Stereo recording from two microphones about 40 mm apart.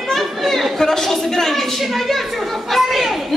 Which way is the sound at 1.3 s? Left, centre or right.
Centre.